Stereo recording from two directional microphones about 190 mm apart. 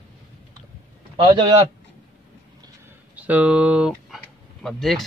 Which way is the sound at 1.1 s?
25° right (ahead or behind).